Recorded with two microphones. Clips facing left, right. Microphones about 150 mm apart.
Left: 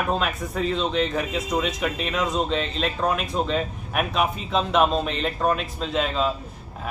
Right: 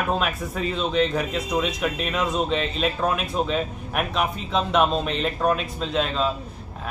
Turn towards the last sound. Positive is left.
turn(degrees=0)  # may be behind; listen again after turning